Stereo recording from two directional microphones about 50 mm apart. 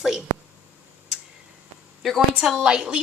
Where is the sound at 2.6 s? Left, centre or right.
Centre.